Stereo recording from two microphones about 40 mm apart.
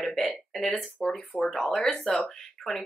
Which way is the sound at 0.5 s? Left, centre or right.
Centre.